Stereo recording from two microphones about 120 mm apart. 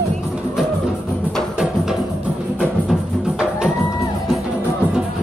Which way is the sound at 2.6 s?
Centre (ahead or behind).